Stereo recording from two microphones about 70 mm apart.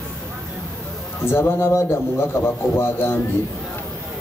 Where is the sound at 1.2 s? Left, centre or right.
Left.